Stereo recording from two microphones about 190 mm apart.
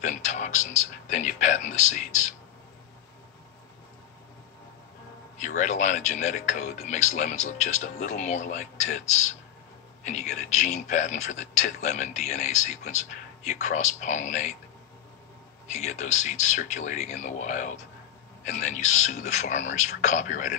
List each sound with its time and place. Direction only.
0.0 s speech: 40° left (ahead or behind)
5.4 s speech: 40° left (ahead or behind)
15.6 s speech: 35° left (ahead or behind)